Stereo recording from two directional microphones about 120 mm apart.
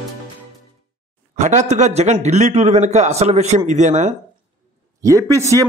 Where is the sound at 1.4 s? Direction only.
80° right.